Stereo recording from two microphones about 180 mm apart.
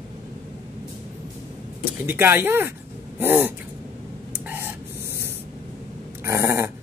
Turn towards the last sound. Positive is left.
turn(degrees=-15)  # may be behind; listen again after turning